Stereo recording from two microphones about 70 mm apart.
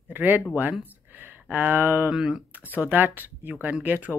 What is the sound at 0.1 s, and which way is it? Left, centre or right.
Speech, right.